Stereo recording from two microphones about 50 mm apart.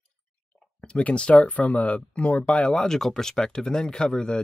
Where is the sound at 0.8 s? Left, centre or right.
Left.